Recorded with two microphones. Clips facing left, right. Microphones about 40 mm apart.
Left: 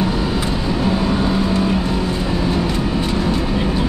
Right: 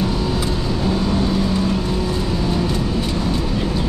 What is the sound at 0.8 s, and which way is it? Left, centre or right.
Vehicle, centre.